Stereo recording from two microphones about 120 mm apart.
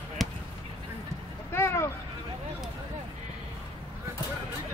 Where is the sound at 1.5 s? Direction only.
25° left (ahead or behind).